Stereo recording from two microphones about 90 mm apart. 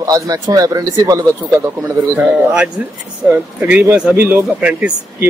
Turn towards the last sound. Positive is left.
turn(degrees=-15)  # may be behind; listen again after turning